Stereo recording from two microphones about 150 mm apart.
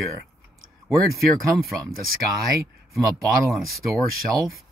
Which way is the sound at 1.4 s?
Centre (ahead or behind).